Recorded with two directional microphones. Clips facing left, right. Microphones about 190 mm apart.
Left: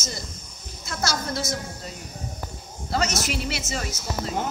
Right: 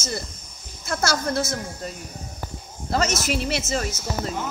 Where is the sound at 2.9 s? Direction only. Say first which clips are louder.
Right 3 dB; 45° right (ahead or behind).